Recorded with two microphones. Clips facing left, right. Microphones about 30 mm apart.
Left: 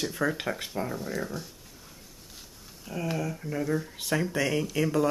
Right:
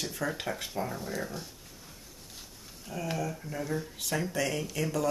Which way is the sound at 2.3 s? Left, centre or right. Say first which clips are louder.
Even; centre.